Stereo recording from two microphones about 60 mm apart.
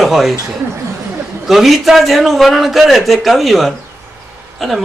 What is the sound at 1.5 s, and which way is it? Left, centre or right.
Speech, centre.